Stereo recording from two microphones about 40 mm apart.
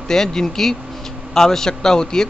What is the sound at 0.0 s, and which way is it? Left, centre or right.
A man's voice, centre.